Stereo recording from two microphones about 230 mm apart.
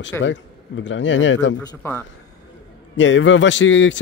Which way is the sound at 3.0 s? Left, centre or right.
Left.